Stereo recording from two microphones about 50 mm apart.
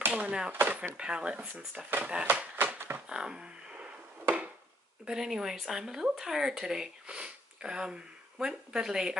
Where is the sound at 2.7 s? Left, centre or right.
Right.